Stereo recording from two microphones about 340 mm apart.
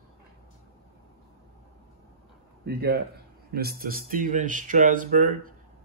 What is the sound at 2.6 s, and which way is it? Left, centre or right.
Speech, right.